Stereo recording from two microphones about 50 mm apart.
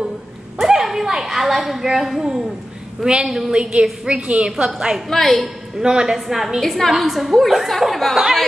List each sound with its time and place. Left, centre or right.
0.6 s a woman's voice: centre
5.1 s a woman's voice: centre
5.8 s a woman's voice: centre